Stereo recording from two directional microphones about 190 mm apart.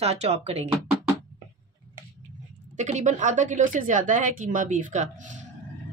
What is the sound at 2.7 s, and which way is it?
A woman's voice, 40° right (ahead or behind).